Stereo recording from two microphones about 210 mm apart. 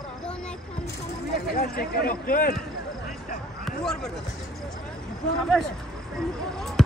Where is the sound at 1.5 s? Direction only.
45° left (ahead or behind).